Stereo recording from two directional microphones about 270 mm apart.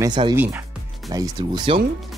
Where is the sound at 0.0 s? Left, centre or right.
Centre.